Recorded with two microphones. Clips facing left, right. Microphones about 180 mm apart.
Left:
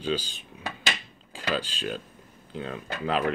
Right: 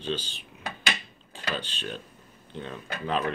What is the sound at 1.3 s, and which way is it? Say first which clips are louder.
Speech: left 4 dB; 90° left.